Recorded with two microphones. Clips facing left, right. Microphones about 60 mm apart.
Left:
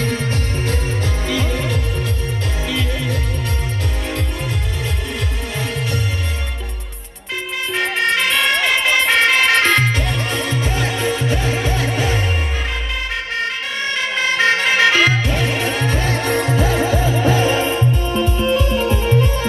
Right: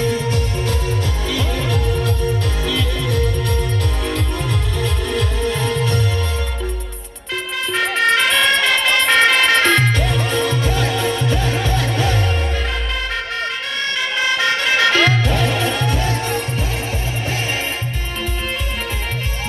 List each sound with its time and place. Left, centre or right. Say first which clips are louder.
0.0 s music: right 2 dB; left
1.3 s music: even; left
5.1 s music: right 5 dB; centre
7.7 s music: right 2 dB; centre
10.0 s music: right 2 dB; centre
10.4 s music: right 2 dB; centre
14.2 s music: left 3 dB; left
16.3 s music: left 5 dB; left